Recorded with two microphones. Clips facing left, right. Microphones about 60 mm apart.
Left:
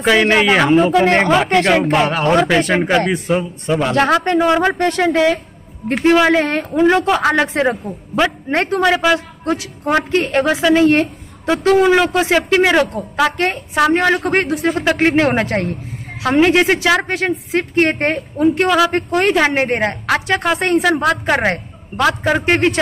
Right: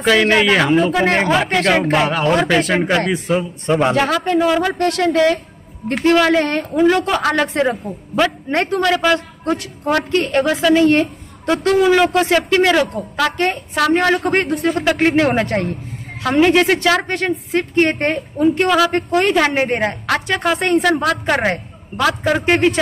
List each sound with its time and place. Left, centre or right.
0.0 s a woman's voice: centre
4.8 s a woman's voice: centre
6.7 s a woman's voice: centre
7.0 s a woman's voice: centre
9.8 s a woman's voice: centre